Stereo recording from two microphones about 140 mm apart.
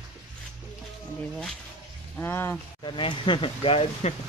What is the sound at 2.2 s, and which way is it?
Speech, 15° left (ahead or behind).